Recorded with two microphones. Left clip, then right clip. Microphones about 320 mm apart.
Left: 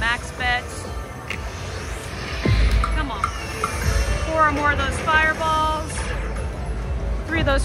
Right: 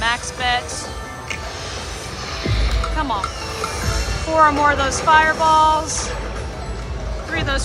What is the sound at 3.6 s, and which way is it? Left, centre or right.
Music, right.